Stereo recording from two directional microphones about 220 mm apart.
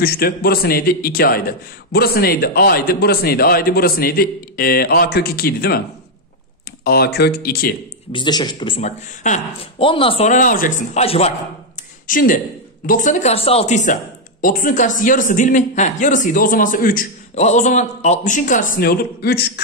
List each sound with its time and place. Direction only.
0.0 s a man's voice: 45° left (ahead or behind)
6.8 s a man's voice: 45° left (ahead or behind)
8.1 s speech: 20° left (ahead or behind)
12.1 s speech: 40° left (ahead or behind)